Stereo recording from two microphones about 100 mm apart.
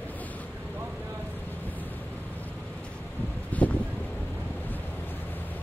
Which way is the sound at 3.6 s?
15° left (ahead or behind).